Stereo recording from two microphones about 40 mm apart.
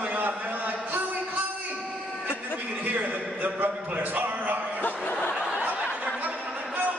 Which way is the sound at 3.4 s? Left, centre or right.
Right.